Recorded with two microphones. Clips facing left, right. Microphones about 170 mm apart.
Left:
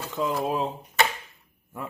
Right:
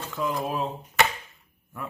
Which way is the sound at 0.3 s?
5° left (ahead or behind).